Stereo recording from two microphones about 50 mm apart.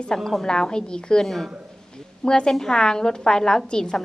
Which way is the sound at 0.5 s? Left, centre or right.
Centre.